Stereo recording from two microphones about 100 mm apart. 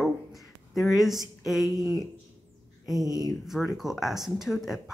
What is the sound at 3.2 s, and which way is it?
Speech, centre (ahead or behind).